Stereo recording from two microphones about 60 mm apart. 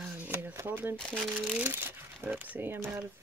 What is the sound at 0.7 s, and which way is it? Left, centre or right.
Speech, right.